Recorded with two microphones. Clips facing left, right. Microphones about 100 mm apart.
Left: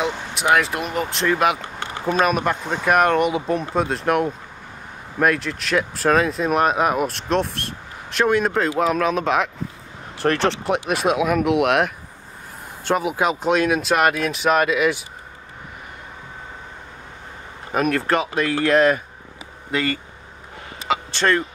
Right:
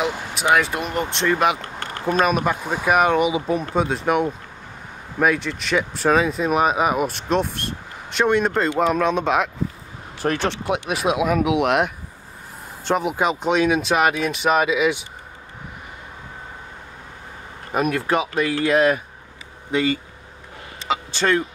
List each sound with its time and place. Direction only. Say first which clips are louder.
0.0 s speech: even; centre (ahead or behind)
1.6 s a sound: left 1 dB; 20° left (ahead or behind)
2.0 s speech: even; centre (ahead or behind)
17.7 s speech: left 1 dB; 5° right (ahead or behind)
21.1 s speech: even; 5° right (ahead or behind)